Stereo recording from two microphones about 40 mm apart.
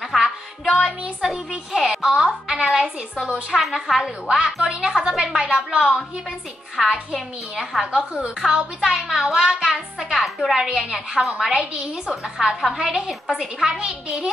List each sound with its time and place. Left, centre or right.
0.2 s music: centre
1.2 s a woman's voice: centre
1.9 s music: centre
2.1 s a child's voice: right
3.5 s a woman's voice: centre
4.6 s a woman's voice: centre
6.8 s a child's voice: centre
7.5 s a woman's voice: centre
7.9 s a child's voice: right
8.5 s a woman's voice: centre
10.1 s a woman's voice: centre
10.5 s a woman's voice: centre